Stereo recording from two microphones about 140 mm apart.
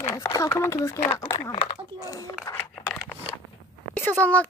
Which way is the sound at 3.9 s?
10° left (ahead or behind).